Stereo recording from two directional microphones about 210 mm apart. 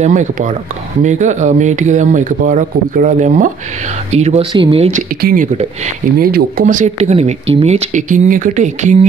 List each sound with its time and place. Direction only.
0.0 s speech: 35° right (ahead or behind)
5.2 s speech: 40° right (ahead or behind)